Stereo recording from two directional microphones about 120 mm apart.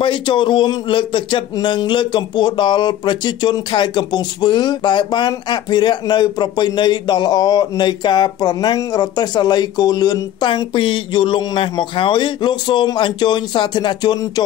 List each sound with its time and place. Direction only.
0.0 s speech: 45° left (ahead or behind)